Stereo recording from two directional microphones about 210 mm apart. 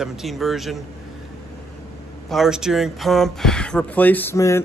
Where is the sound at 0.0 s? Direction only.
Centre (ahead or behind).